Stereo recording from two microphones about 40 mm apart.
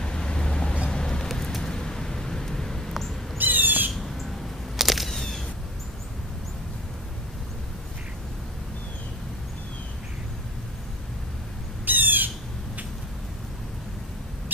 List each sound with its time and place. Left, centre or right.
0.0 s vehicle: left
1.6 s a sound: centre
3.3 s squawk: right
3.9 s squawk: centre
4.7 s a sound: centre
11.8 s squawk: right